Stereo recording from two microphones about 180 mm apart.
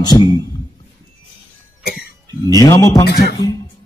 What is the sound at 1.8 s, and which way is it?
Cough, 60° left (ahead or behind).